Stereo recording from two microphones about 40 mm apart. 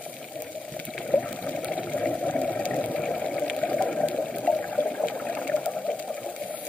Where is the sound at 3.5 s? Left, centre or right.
Left.